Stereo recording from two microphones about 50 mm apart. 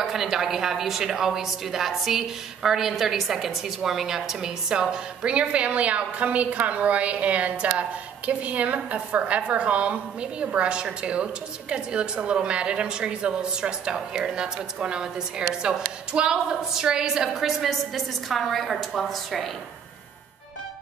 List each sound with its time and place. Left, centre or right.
0.0 s a woman's voice: centre